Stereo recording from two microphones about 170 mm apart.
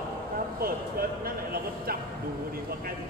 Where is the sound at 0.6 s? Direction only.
60° right (ahead or behind).